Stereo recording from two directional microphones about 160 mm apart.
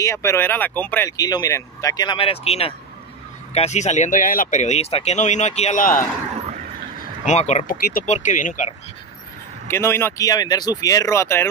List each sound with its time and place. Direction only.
0.0 s speech: 20° left (ahead or behind); by 6.0 s 55° left (ahead or behind)
7.2 s speech: 45° left (ahead or behind)
7.6 s speech: 65° left (ahead or behind)
8.1 s speech: 50° left (ahead or behind)
9.7 s speech: 15° left (ahead or behind)